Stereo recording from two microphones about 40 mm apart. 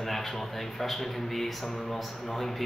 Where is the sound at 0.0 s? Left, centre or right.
Centre.